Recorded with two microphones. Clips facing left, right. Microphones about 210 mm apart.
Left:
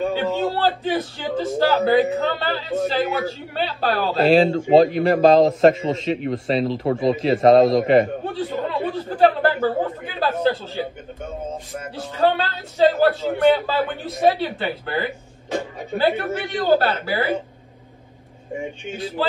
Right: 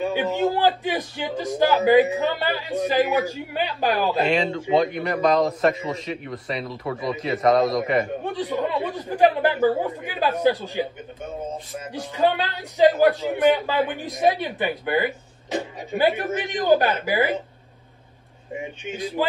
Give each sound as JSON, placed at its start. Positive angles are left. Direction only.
{"t": 0.0, "sound": "a man's voice", "side_deg": -15}
{"t": 4.3, "sound": "speech", "side_deg": 30}
{"t": 8.3, "sound": "a man's voice", "side_deg": -15}
{"t": 11.9, "sound": "a man's voice", "side_deg": -15}
{"t": 18.9, "sound": "a man's voice", "side_deg": -15}